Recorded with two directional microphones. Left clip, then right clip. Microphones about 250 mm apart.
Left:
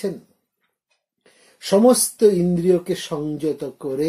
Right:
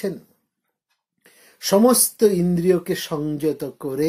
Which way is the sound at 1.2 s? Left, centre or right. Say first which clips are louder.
Right 4 dB; right.